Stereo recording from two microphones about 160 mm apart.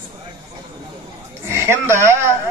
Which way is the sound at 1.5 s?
15° right (ahead or behind).